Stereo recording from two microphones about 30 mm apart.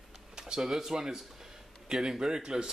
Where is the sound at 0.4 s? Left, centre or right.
Centre.